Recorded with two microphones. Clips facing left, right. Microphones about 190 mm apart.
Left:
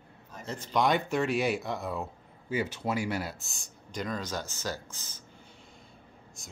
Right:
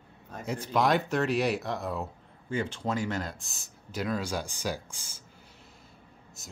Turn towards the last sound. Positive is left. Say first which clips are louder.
# right 1 dB
turn(degrees=-5)  # may be behind; listen again after turning